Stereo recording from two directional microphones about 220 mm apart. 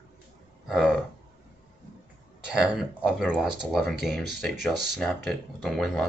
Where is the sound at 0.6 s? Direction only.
Centre (ahead or behind).